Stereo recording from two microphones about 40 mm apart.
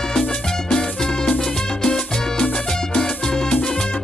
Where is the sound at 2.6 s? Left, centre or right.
Centre.